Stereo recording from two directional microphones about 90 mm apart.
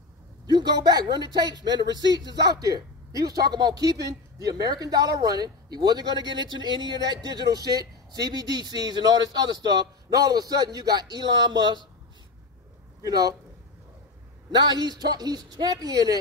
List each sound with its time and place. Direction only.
0.5 s speech: 50° right (ahead or behind)
14.7 s speech: 50° right (ahead or behind)